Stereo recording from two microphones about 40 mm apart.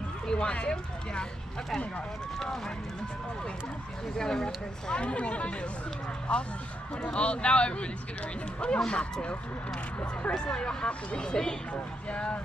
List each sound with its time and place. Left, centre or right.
0.3 s speech: left
2.3 s speech: centre
4.2 s speech: centre
4.8 s speech: left
10.3 s speech: centre